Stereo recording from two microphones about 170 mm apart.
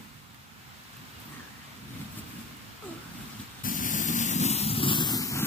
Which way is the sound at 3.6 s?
50° left (ahead or behind).